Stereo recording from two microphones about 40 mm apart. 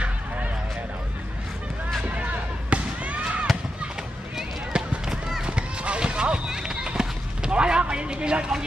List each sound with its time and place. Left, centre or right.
2.7 s basketball bounce: right
4.7 s run: centre
5.6 s run: right